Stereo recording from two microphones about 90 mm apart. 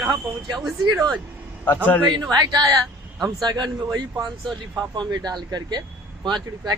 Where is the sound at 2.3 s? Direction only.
50° right (ahead or behind).